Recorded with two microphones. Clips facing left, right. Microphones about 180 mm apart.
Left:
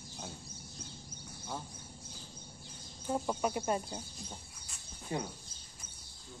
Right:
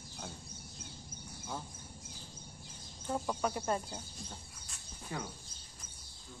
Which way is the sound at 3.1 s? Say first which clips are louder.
Left 2 dB; 15° left (ahead or behind).